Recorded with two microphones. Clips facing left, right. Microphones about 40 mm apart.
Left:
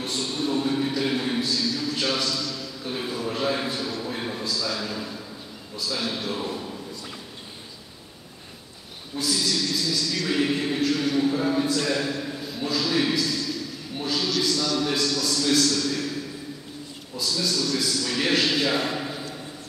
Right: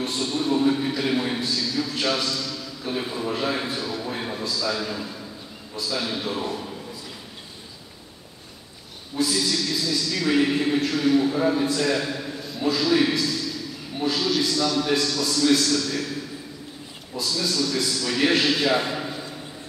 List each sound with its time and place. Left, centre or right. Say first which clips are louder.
0.0 s a sound: right 2 dB; centre
3.3 s a man's voice: left 1 dB; centre
9.1 s a man's voice: right 2 dB; centre
17.3 s a man's voice: right 1 dB; centre